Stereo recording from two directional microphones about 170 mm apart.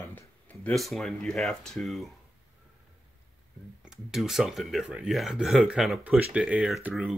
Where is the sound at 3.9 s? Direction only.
5° right (ahead or behind).